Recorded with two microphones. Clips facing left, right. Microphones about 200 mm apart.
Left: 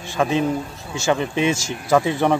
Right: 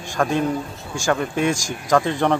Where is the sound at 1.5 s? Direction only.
15° right (ahead or behind).